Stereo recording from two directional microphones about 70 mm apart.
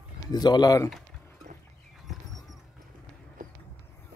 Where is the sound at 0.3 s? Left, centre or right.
Left.